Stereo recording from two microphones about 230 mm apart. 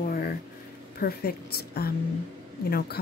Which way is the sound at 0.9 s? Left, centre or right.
Left.